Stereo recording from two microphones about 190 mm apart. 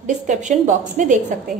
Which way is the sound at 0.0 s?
40° right (ahead or behind).